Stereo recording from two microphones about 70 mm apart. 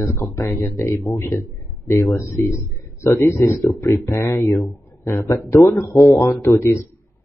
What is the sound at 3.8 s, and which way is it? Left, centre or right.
Speech, left.